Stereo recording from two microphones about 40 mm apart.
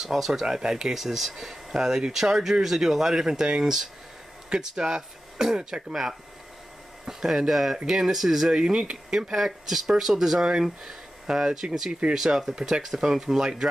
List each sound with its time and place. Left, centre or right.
0.0 s speech: centre
0.9 s speech: centre
8.5 s speech: right
9.3 s speech: centre